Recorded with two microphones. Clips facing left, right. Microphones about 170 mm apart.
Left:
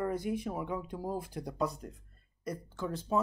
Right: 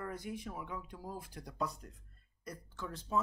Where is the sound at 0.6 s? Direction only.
20° left (ahead or behind).